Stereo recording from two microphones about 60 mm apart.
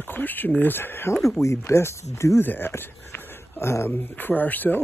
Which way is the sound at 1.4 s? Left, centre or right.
Left.